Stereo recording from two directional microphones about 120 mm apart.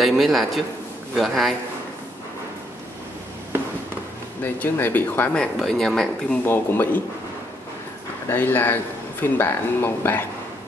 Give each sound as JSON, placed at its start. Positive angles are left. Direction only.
{"t": 0.0, "sound": "a man's voice", "side_deg": 0}
{"t": 4.4, "sound": "speech", "side_deg": 15}
{"t": 6.4, "sound": "speech", "side_deg": 15}
{"t": 8.3, "sound": "speech", "side_deg": 15}